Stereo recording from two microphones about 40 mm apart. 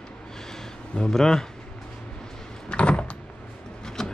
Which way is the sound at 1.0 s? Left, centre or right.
Centre.